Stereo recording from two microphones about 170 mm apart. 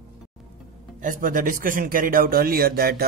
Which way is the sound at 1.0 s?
50° right (ahead or behind).